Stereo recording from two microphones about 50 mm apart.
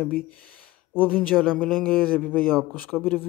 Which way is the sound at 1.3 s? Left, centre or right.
Centre.